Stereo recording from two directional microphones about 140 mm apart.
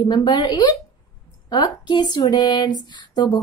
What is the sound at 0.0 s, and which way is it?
Speech, 30° left (ahead or behind).